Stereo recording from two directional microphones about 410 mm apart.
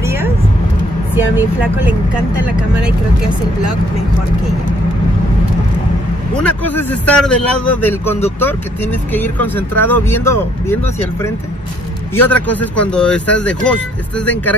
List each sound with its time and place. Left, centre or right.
0.0 s vehicle: centre
1.1 s speech: centre
6.3 s speech: centre
12.2 s speech: centre